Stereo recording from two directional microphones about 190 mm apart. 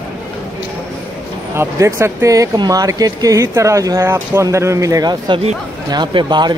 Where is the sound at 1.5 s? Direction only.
15° right (ahead or behind).